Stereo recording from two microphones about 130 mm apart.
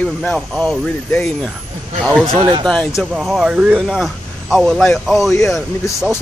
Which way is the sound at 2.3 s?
35° right (ahead or behind).